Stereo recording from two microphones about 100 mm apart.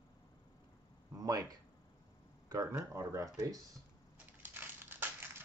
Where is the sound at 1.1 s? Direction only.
35° right (ahead or behind).